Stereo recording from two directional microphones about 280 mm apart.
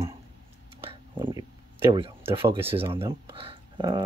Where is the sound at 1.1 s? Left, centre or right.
Centre.